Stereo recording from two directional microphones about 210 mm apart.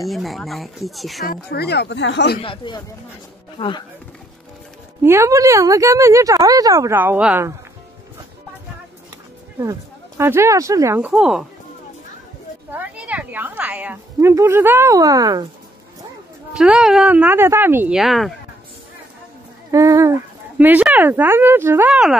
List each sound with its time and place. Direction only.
0.1 s speech: centre (ahead or behind)
1.2 s speech: 45° left (ahead or behind)
2.4 s speech: 25° left (ahead or behind)
5.0 s a woman's voice: 10° right (ahead or behind)
9.6 s a woman's voice: 15° right (ahead or behind)
12.7 s a woman's voice: 5° right (ahead or behind)
16.5 s speech: 5° right (ahead or behind)
19.7 s speech: 15° right (ahead or behind)